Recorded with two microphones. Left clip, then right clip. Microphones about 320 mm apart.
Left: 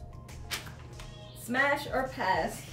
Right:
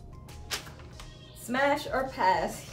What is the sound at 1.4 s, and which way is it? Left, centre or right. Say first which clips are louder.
Speech: right 1 dB; centre.